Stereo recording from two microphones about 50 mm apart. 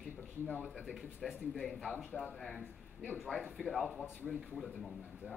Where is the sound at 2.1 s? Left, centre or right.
Left.